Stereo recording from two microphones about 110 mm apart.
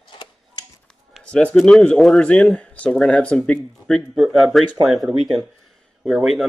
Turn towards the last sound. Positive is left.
turn(degrees=-5)  # may be behind; listen again after turning